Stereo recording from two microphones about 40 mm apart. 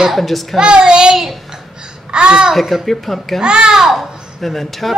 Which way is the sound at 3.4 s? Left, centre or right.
Right.